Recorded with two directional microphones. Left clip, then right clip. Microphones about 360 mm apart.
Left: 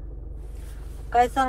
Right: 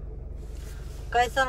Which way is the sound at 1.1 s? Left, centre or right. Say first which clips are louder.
Left 3 dB; centre.